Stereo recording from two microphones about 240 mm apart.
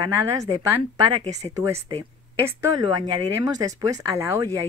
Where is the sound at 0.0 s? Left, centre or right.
Centre.